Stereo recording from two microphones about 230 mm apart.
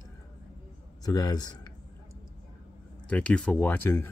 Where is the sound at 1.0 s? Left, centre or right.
Centre.